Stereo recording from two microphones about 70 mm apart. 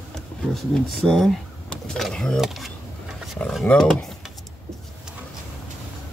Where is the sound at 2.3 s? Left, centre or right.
Centre.